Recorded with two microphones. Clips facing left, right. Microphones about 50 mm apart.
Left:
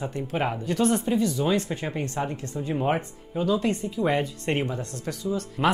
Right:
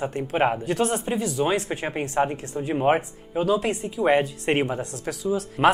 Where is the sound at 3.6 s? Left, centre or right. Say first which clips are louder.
Even; centre.